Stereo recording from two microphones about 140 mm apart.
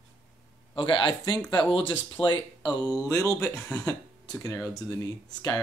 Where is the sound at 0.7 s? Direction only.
35° left (ahead or behind).